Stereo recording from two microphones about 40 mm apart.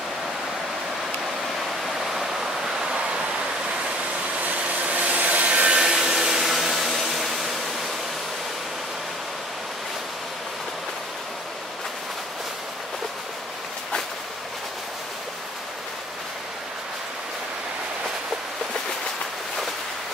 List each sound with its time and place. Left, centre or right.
2.0 s waves: centre
4.4 s vacuum cleaner: right
5.8 s hair dryer: centre